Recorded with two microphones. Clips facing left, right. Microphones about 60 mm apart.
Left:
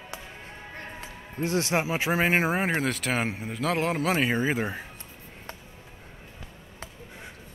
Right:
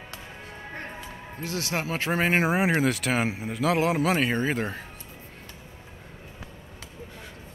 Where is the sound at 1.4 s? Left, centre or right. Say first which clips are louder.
Left 5 dB; left.